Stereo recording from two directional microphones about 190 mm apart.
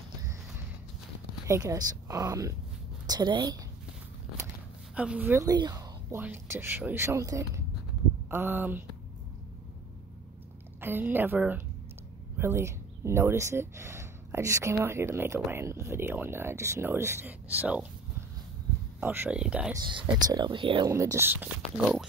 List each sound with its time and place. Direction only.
1.5 s speech: 15° right (ahead or behind)
4.9 s speech: 5° right (ahead or behind)
10.8 s speech: 10° right (ahead or behind)
18.9 s speech: 10° right (ahead or behind)
19.7 s speech: 25° right (ahead or behind)
20.9 s speech: 15° right (ahead or behind)